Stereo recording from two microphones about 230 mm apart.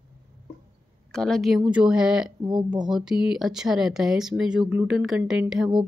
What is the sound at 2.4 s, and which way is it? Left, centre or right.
Speech, centre.